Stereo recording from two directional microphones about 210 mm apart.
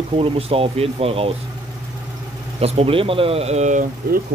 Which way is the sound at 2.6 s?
30° right (ahead or behind).